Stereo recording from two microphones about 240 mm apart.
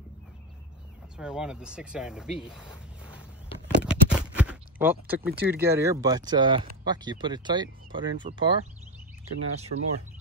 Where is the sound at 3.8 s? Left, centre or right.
Centre.